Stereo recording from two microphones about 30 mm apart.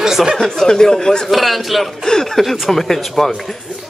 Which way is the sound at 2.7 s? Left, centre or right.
Centre.